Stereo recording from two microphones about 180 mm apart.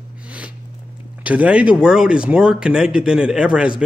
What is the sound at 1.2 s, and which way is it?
Speech, 5° right (ahead or behind).